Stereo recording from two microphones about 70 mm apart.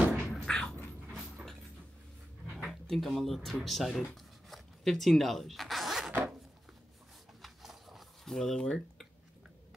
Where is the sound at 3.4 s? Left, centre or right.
Centre.